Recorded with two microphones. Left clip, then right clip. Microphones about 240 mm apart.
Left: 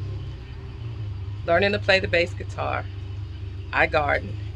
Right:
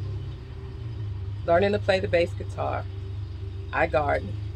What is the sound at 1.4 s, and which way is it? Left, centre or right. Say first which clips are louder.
Speech: left 1 dB; centre.